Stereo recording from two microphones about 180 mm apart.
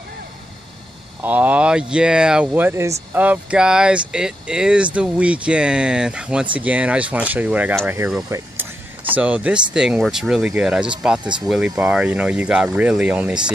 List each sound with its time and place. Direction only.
1.2 s speech: 10° right (ahead or behind)
9.1 s speech: 10° right (ahead or behind)